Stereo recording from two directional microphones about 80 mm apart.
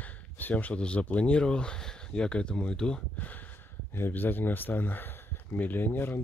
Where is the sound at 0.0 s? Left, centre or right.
Left.